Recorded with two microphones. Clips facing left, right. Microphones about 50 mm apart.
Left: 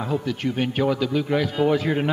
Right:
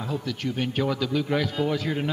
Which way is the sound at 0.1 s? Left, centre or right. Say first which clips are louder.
Left 4 dB; centre.